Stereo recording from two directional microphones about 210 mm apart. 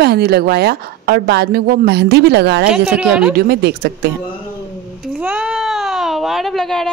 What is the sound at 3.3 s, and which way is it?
Speech, 50° right (ahead or behind).